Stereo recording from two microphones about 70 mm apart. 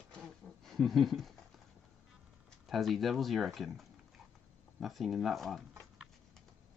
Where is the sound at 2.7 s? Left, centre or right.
Centre.